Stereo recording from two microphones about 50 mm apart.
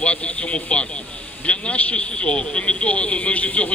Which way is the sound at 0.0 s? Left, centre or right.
Left.